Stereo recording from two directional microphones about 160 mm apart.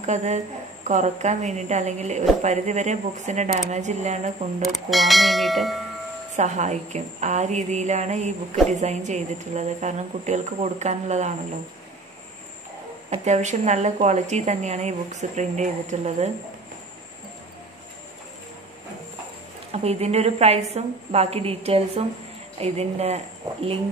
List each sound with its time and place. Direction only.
0.0 s a woman's voice: 45° right (ahead or behind)
4.6 s speech: centre (ahead or behind)
6.3 s a woman's voice: 45° right (ahead or behind)
13.1 s a woman's voice: 45° right (ahead or behind)
19.7 s a woman's voice: 40° right (ahead or behind)